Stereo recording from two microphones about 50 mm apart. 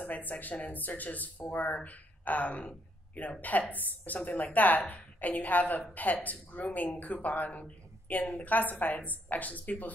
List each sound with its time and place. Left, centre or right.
0.0 s speech: left